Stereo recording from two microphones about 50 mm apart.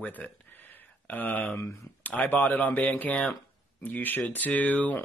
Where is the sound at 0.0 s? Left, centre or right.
Left.